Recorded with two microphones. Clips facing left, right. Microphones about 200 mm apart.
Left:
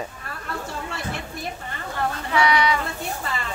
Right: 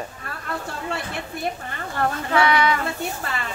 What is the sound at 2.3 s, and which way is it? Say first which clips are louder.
Speech: right 1 dB; 50° right (ahead or behind).